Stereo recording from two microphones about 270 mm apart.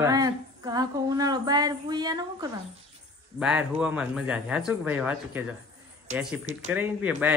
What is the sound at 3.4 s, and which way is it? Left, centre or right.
Speech, centre.